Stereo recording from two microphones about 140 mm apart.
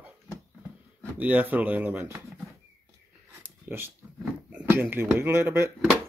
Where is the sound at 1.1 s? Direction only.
10° right (ahead or behind).